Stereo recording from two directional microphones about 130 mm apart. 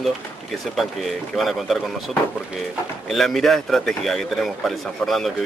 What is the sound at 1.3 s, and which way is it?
A man's voice, centre (ahead or behind).